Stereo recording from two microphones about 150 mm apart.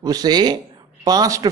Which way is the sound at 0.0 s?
25° right (ahead or behind).